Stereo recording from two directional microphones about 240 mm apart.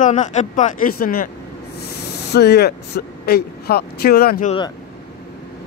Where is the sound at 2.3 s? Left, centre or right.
Left.